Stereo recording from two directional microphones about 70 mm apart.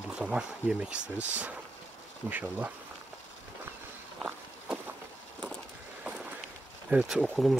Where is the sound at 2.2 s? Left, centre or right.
Right.